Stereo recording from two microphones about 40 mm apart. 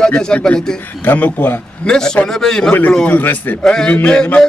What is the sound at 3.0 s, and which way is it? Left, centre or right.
Speech, left.